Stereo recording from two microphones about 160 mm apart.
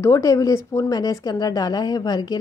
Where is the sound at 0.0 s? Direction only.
20° left (ahead or behind).